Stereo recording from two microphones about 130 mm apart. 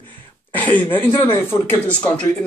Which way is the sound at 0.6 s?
15° left (ahead or behind).